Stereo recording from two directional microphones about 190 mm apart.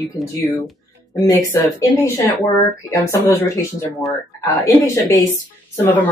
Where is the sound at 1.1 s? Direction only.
15° left (ahead or behind).